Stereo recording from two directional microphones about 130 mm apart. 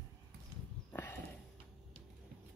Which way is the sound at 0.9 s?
15° left (ahead or behind).